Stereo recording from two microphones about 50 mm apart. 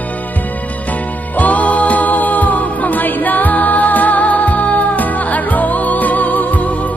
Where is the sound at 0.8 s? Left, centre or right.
Left.